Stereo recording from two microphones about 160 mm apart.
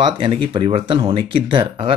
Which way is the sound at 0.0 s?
30° right (ahead or behind).